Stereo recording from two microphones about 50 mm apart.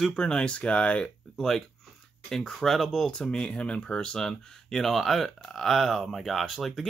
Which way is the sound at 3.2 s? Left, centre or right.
Centre.